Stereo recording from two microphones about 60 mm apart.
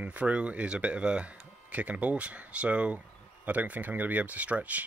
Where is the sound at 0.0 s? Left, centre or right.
Right.